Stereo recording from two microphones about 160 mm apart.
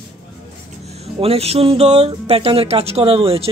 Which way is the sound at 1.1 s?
40° right (ahead or behind).